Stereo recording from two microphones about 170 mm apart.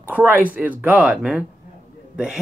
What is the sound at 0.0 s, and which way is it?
Speech, 10° right (ahead or behind).